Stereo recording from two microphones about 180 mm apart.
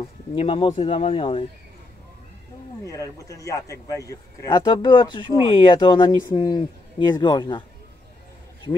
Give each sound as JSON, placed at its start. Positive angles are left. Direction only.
{"t": 0.3, "sound": "speech", "side_deg": 30}
{"t": 2.8, "sound": "a man's voice", "side_deg": 20}